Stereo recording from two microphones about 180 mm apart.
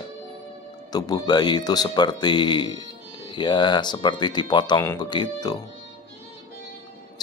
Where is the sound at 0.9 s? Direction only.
20° left (ahead or behind).